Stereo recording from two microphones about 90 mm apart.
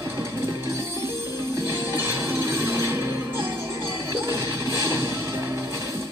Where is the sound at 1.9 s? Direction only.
30° right (ahead or behind).